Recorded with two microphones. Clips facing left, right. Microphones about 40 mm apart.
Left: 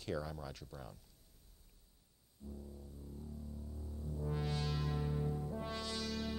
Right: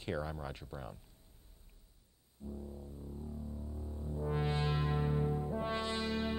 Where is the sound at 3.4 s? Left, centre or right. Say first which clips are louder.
Right 5 dB; right.